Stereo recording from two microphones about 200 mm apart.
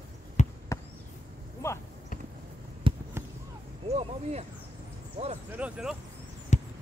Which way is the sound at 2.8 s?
25° right (ahead or behind).